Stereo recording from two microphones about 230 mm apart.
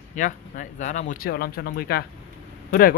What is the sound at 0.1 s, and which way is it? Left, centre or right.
Speech, left.